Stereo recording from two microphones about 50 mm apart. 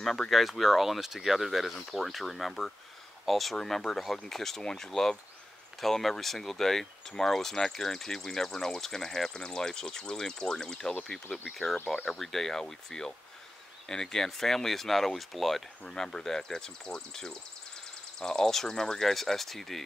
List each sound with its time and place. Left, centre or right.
0.3 s speech: centre
11.2 s speech: left
11.5 s speech: centre
15.8 s speech: centre